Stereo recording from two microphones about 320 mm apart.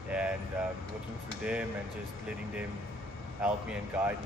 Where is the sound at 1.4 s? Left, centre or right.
Centre.